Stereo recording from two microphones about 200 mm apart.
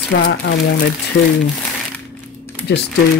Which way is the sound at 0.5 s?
65° left (ahead or behind).